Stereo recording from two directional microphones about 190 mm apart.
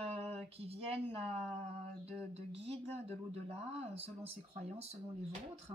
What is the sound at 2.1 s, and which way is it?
Speech, 30° right (ahead or behind).